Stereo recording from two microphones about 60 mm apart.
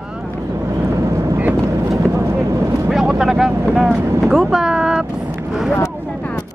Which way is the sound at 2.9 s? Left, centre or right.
Centre.